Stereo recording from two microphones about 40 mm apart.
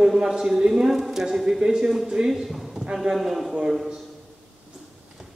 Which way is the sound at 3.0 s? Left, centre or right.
Centre.